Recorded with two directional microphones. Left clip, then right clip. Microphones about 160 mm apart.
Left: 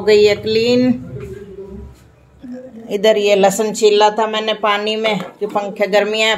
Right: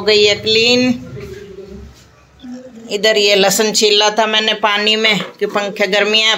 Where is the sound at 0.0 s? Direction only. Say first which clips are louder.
Even; 20° left (ahead or behind).